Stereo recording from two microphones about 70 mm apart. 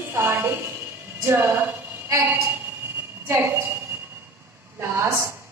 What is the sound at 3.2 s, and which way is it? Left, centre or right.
Speech, right.